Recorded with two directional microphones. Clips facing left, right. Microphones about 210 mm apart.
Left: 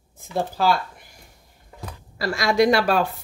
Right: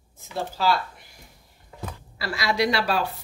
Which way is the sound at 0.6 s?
50° left (ahead or behind).